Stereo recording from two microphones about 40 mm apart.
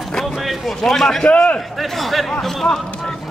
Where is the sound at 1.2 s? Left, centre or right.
Left.